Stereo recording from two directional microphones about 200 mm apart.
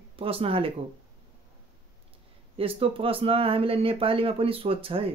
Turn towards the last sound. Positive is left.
turn(degrees=-30)  # may be behind; listen again after turning